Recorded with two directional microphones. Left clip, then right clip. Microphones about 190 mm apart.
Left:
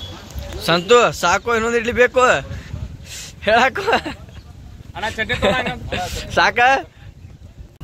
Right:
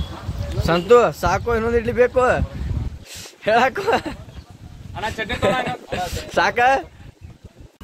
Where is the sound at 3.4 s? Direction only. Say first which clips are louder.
Left 2 dB; centre (ahead or behind).